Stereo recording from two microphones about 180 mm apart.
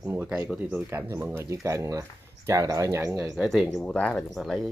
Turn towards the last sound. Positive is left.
turn(degrees=0)  # may be behind; listen again after turning